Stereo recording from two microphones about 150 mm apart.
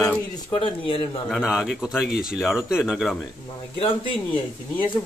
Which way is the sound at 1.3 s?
Centre (ahead or behind).